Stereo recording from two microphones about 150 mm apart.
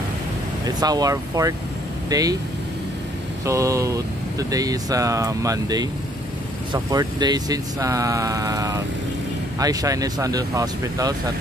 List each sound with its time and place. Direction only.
0.7 s speech: 25° right (ahead or behind)
3.4 s speech: 20° right (ahead or behind)